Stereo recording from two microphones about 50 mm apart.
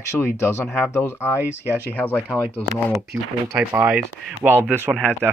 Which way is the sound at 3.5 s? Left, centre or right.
Right.